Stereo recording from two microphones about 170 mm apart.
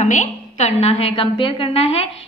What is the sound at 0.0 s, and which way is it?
A woman's voice, 40° left (ahead or behind).